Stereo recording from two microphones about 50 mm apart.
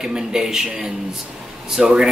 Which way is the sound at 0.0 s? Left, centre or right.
Centre.